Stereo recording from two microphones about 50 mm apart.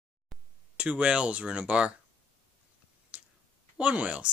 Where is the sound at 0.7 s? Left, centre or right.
Right.